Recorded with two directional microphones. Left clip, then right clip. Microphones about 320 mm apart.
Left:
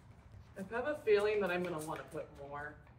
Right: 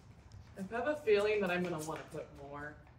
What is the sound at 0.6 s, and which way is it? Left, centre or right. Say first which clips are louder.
A man's voice: right 2 dB; centre.